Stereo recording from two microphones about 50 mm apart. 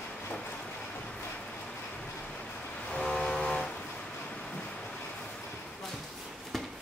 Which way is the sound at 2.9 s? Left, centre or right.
Centre.